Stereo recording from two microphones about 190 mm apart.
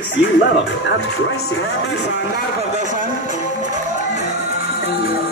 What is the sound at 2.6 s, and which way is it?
Music, 40° right (ahead or behind).